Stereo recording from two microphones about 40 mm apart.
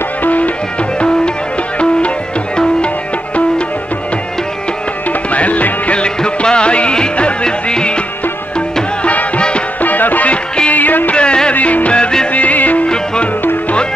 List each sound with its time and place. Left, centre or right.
0.2 s music: left
0.9 s music: left
1.8 s tabla: left
5.3 s music: left
5.9 s music: left
9.8 s music: left
10.3 s music: left
10.7 s music: left
11.1 s music: left
11.5 s music: left
12.3 s music: left
12.8 s music: left